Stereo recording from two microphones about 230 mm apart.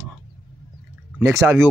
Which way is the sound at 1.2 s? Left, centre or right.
Centre.